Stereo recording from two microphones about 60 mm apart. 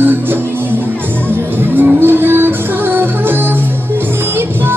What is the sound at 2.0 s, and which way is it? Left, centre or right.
Music, right.